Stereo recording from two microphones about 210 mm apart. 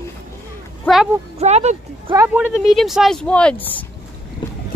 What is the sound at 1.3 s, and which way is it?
Speech, 30° right (ahead or behind).